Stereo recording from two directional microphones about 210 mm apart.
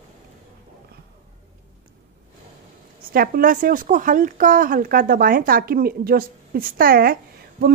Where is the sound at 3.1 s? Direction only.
45° right (ahead or behind).